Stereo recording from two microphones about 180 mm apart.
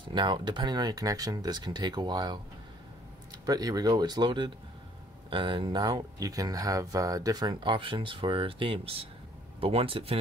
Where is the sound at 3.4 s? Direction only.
20° right (ahead or behind).